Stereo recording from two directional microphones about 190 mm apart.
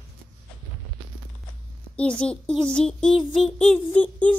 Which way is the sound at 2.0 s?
5° left (ahead or behind).